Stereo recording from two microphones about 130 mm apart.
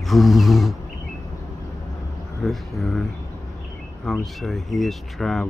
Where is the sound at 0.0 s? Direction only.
Centre (ahead or behind).